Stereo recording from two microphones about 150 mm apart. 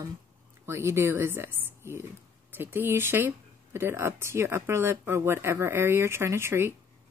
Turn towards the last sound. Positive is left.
turn(degrees=-15)  # may be behind; listen again after turning